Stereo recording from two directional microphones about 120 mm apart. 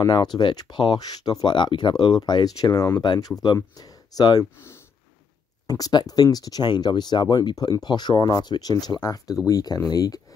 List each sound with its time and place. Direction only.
0.0 s speech: 35° left (ahead or behind)
5.7 s speech: 30° left (ahead or behind)